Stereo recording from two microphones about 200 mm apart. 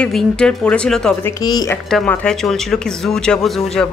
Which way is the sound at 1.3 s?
20° left (ahead or behind).